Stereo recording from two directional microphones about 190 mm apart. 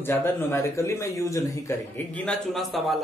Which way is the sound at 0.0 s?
10° left (ahead or behind).